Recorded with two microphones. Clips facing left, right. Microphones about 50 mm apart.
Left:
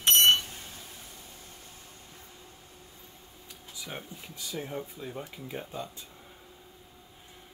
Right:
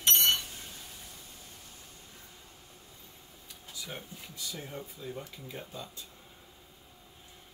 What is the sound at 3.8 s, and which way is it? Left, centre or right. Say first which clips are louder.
Speech: left 2 dB; centre.